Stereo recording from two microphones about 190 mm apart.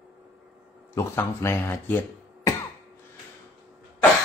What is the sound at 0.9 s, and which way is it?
Speech, 15° left (ahead or behind).